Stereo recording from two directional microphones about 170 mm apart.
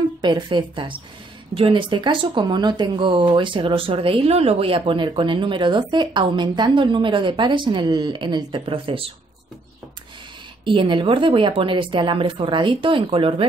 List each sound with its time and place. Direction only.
0.2 s speech: 25° right (ahead or behind)
10.6 s speech: 30° right (ahead or behind)